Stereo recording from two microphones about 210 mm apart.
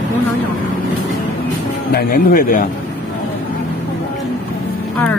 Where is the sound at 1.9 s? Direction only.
45° left (ahead or behind).